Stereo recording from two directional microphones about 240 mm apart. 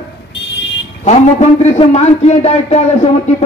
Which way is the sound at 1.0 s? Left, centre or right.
Left.